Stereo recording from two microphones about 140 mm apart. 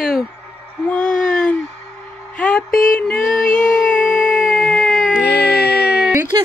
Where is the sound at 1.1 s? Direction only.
80° left.